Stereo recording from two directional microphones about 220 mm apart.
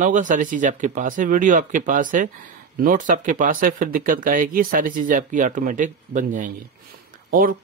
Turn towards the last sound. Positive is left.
turn(degrees=-40)  # may be behind; listen again after turning